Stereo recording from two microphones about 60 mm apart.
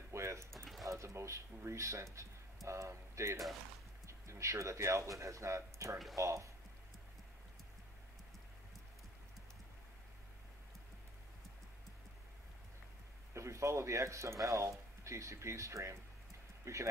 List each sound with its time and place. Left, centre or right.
0.1 s a sound: right
0.8 s speech: right
13.3 s speech: right